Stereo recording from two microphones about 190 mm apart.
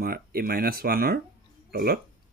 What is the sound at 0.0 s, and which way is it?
Speech, 55° right (ahead or behind).